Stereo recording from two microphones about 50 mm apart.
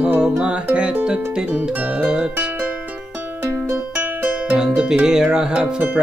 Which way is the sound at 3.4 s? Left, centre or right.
Right.